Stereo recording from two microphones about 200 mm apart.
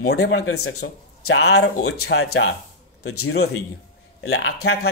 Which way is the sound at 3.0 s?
90° left.